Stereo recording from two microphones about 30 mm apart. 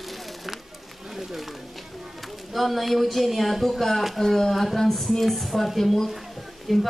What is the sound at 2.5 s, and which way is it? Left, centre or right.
Speech, centre.